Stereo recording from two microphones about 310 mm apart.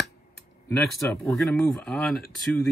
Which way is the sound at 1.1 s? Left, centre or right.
Centre.